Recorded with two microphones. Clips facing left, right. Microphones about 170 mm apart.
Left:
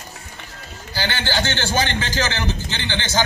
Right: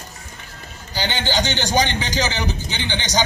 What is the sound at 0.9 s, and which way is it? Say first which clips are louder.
A man's voice: right 1 dB; 15° right (ahead or behind).